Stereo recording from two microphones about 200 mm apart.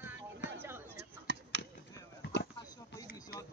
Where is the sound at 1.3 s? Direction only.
55° right (ahead or behind).